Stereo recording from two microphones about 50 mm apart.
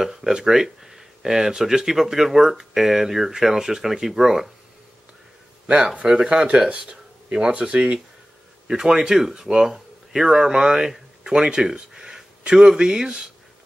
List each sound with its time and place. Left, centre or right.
0.0 s speech: centre
5.7 s speech: centre